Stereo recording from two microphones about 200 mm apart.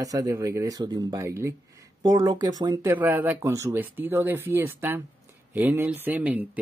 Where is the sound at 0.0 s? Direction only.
15° right (ahead or behind).